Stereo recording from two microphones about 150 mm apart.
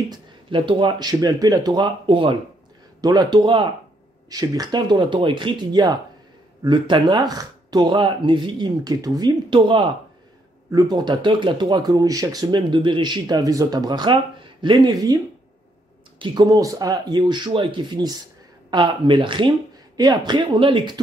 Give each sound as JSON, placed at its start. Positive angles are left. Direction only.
{"t": 0.1, "sound": "speech", "side_deg": -35}
{"t": 16.2, "sound": "speech", "side_deg": -25}